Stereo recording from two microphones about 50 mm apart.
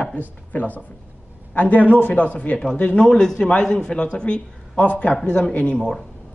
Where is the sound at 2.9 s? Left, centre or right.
Centre.